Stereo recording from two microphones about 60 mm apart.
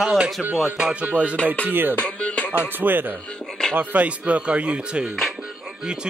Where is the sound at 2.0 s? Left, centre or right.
Left.